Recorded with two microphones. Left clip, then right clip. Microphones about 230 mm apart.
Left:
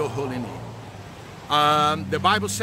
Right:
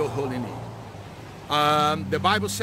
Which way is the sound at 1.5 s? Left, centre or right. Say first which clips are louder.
Left 2 dB; centre.